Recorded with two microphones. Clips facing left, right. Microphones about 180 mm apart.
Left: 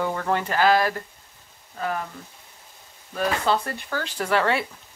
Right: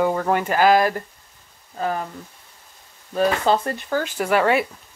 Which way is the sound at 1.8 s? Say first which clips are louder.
Right 3 dB; 35° right (ahead or behind).